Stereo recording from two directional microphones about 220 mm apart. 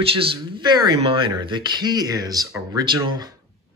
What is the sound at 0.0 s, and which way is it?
Speech, 25° right (ahead or behind).